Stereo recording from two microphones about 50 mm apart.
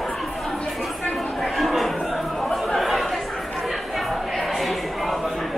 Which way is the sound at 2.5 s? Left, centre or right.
Centre.